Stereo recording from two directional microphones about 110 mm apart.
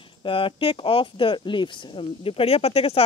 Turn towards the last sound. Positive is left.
turn(degrees=65)  # may be behind; listen again after turning